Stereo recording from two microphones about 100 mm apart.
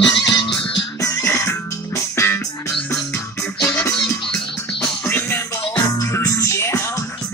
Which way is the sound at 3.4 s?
10° left (ahead or behind).